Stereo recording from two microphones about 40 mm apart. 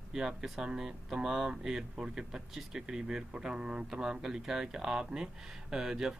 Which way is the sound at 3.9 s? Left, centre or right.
Centre.